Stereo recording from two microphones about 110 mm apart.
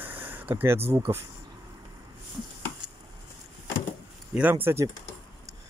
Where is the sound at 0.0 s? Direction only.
15° right (ahead or behind).